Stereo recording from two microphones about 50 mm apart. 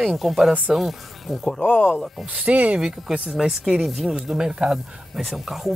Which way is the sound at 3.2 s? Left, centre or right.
Centre.